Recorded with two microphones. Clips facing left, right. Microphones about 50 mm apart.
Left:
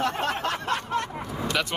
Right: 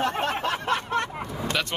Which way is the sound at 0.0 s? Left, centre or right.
Right.